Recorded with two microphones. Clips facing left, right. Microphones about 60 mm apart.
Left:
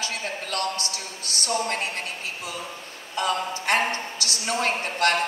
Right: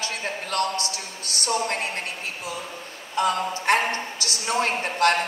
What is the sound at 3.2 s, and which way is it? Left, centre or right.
A woman's voice, right.